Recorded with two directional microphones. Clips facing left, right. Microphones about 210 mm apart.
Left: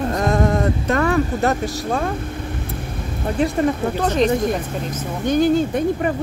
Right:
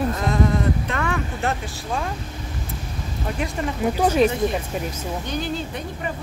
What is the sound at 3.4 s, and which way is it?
Speech, 30° left (ahead or behind).